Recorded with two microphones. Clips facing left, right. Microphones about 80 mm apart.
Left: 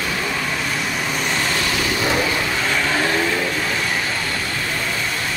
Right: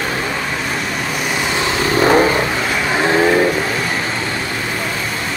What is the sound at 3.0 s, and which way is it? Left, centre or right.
Vehicle, right.